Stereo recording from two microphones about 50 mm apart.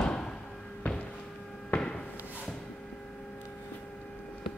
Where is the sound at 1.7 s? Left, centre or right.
Centre.